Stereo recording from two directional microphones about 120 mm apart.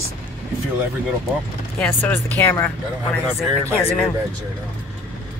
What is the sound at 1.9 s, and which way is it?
Speech, 15° left (ahead or behind).